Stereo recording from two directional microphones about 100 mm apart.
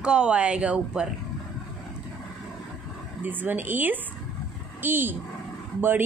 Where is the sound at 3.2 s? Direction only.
15° right (ahead or behind).